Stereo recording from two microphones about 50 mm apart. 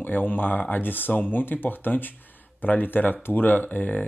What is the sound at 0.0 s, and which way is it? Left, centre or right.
Speech, left.